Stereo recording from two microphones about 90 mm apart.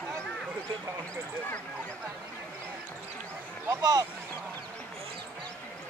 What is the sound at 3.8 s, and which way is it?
Speech, 50° right (ahead or behind).